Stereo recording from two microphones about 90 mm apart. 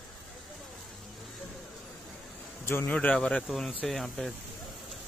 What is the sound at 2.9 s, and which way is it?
Speech, 15° left (ahead or behind).